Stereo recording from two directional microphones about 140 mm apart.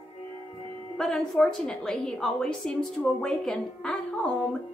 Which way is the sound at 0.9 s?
Centre (ahead or behind).